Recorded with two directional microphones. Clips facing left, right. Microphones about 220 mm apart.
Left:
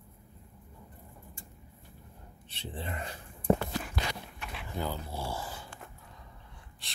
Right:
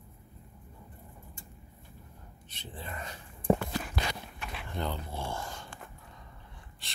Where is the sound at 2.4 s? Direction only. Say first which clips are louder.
Left 4 dB; 30° left (ahead or behind).